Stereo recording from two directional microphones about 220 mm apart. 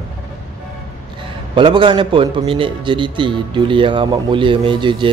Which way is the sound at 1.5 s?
20° right (ahead or behind).